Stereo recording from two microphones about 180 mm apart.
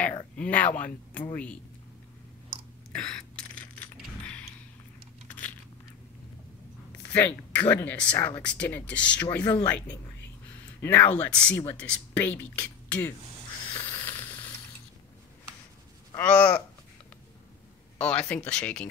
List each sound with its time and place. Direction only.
0.4 s speech: 10° left (ahead or behind)
2.9 s a sound: 5° left (ahead or behind)
7.1 s speech: 10° left (ahead or behind)
9.4 s speech: 20° left (ahead or behind)
10.8 s speech: 10° left (ahead or behind)
13.7 s a sound: 30° left (ahead or behind)
14.0 s a sound: 10° left (ahead or behind)
16.2 s speech: 5° left (ahead or behind)
18.0 s speech: 5° left (ahead or behind)